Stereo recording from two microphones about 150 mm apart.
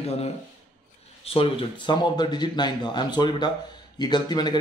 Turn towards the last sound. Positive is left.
turn(degrees=30)  # may be behind; listen again after turning